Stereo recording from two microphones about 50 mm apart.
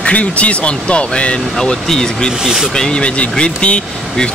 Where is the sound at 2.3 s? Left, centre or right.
Centre.